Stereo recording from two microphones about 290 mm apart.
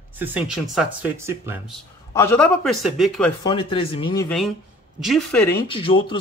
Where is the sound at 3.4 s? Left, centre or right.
Centre.